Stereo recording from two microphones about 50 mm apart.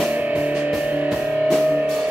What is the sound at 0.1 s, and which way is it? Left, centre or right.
Music, right.